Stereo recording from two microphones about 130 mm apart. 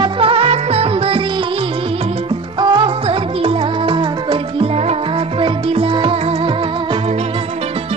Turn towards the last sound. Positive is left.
turn(degrees=-45)  # may be behind; listen again after turning